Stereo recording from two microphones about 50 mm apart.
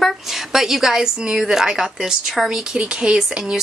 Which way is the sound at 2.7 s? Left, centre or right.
Centre.